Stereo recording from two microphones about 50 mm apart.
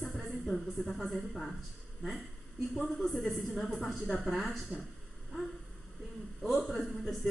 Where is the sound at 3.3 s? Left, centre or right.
Centre.